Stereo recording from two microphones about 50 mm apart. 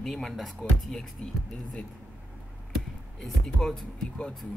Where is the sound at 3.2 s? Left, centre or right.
Centre.